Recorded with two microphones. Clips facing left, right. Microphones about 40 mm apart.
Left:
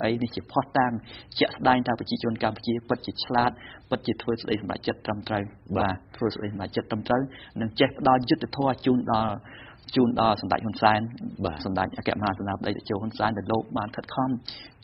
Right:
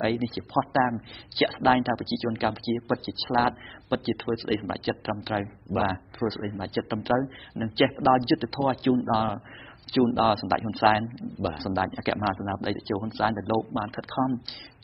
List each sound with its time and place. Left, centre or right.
0.0 s a man's voice: centre